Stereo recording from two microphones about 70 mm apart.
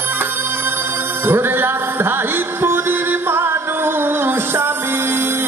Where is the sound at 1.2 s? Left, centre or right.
Right.